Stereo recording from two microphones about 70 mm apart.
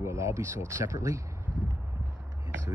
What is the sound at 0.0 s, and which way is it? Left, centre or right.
Speech, right.